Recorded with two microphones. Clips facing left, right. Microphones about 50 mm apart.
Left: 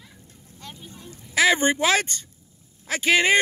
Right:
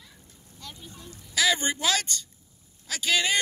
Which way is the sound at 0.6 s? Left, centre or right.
Left.